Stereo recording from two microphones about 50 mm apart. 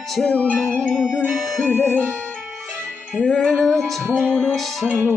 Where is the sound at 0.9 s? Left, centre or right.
Centre.